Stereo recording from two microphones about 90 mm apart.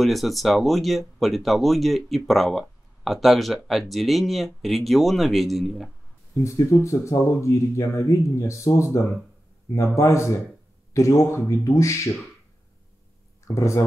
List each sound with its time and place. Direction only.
0.0 s speech: centre (ahead or behind)
6.4 s speech: 35° left (ahead or behind)
13.6 s speech: 35° left (ahead or behind)